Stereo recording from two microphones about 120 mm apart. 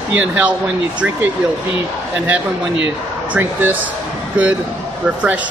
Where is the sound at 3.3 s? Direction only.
15° right (ahead or behind).